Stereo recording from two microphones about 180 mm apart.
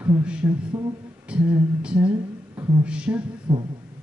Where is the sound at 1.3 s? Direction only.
5° right (ahead or behind).